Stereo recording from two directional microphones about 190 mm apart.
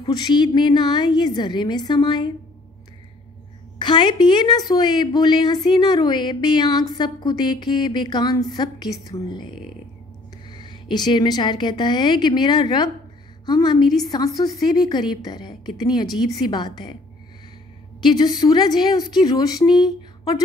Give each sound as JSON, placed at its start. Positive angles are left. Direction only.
{"t": 0.0, "sound": "a woman's voice", "side_deg": 25}
{"t": 3.8, "sound": "a woman's voice", "side_deg": 25}
{"t": 18.0, "sound": "a woman's voice", "side_deg": 20}